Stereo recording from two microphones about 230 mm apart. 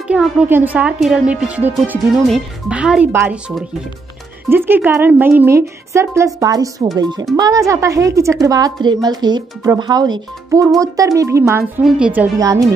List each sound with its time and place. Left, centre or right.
0.1 s a woman's voice: centre